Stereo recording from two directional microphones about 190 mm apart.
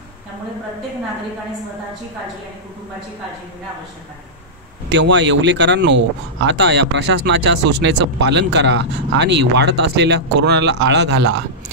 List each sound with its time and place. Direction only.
4.9 s speech: 70° right (ahead or behind)